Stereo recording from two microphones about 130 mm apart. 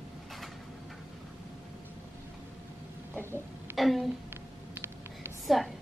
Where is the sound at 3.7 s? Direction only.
Centre (ahead or behind).